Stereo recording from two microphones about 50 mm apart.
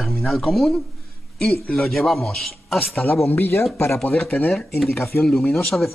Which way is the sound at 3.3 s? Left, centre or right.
Left.